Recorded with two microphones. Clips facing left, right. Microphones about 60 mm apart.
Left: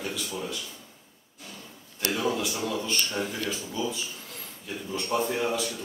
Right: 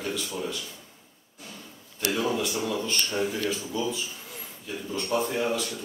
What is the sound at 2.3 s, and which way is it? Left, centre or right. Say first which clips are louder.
A man's voice: right 1 dB; centre.